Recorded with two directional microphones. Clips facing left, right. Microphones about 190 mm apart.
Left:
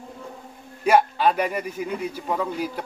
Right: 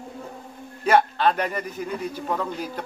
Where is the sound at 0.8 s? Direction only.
10° left (ahead or behind).